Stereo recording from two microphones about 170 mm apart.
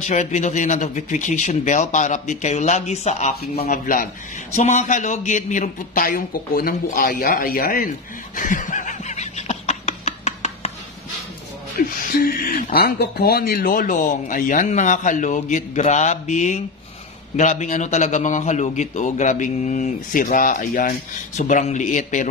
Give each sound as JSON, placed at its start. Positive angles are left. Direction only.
{"t": 0.0, "sound": "speech", "side_deg": 45}
{"t": 3.6, "sound": "speech", "side_deg": 55}
{"t": 8.4, "sound": "snicker", "side_deg": 50}
{"t": 11.9, "sound": "speech", "side_deg": 55}